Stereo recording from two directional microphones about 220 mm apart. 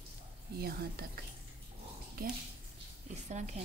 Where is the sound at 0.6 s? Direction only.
45° right (ahead or behind).